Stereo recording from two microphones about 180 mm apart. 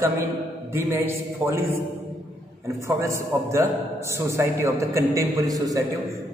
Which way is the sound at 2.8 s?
15° right (ahead or behind).